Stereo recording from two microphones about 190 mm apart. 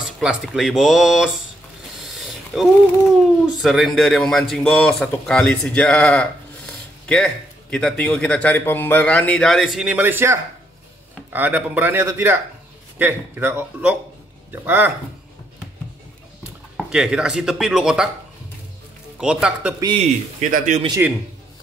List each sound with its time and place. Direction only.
0.0 s speech: 5° right (ahead or behind)
2.0 s a sound: centre (ahead or behind)
3.4 s speech: centre (ahead or behind)
16.7 s speech: centre (ahead or behind)
19.1 s speech: 5° right (ahead or behind)
20.0 s speech: 40° right (ahead or behind)